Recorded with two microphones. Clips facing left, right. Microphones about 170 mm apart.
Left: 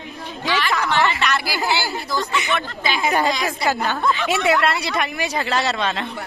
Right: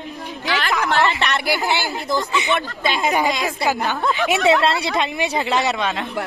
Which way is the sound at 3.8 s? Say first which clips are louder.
Right 1 dB; 15° right (ahead or behind).